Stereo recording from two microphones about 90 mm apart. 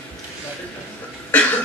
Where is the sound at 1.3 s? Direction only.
15° left (ahead or behind).